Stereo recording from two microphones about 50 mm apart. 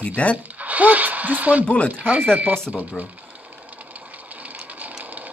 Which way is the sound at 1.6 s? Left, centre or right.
Left.